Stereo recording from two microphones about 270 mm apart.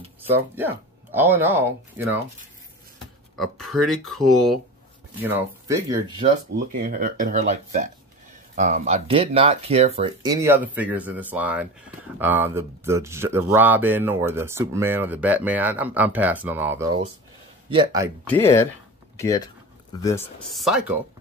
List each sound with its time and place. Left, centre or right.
0.3 s speech: centre
3.3 s speech: centre
5.2 s speech: centre
6.5 s speech: right; by 18.1 s centre
19.9 s speech: centre
20.5 s speech: centre